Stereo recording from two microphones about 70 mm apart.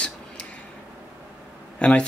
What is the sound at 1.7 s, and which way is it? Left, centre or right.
Speech, centre.